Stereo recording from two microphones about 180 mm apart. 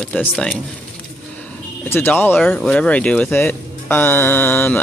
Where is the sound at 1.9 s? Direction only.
10° left (ahead or behind).